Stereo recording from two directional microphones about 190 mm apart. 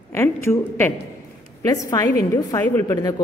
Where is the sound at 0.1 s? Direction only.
15° left (ahead or behind).